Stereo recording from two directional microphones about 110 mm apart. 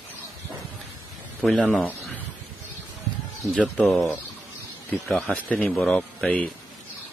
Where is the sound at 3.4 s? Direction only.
Centre (ahead or behind).